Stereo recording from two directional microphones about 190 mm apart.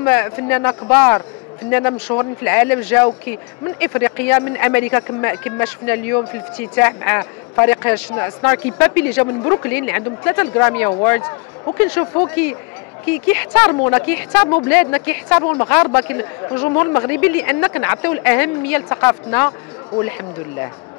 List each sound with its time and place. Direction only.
0.0 s speech: 10° left (ahead or behind)